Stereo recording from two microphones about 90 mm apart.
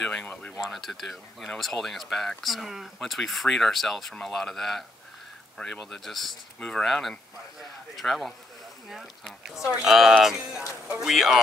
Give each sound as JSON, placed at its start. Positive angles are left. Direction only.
{"t": 0.0, "sound": "speech", "side_deg": 10}
{"t": 0.6, "sound": "speech", "side_deg": 0}